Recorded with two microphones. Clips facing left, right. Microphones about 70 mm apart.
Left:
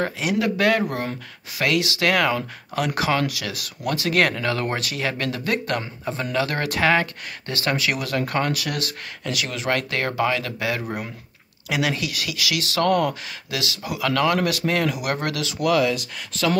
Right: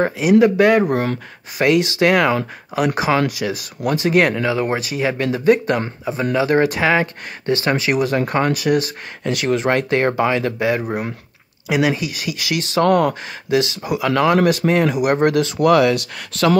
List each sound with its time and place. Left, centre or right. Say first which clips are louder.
0.0 s speech: right 9 dB; right
7.4 s speech: right 6 dB; right
9.3 s speech: right 7 dB; right
15.8 s speech: right 6 dB; right